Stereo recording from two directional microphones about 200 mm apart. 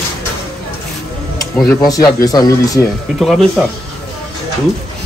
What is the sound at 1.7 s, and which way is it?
Speech, 20° left (ahead or behind).